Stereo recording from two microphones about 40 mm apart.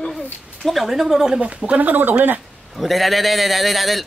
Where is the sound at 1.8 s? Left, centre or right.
Right.